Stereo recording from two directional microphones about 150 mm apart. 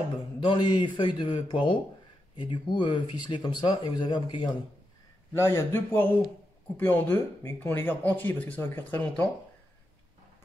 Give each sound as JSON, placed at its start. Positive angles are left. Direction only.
{"t": 0.5, "sound": "speech", "side_deg": 30}
{"t": 5.3, "sound": "speech", "side_deg": 15}